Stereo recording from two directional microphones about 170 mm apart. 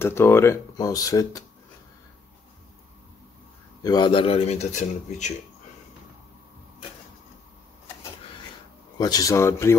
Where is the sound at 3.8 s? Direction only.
25° left (ahead or behind); by 5.3 s 40° left (ahead or behind).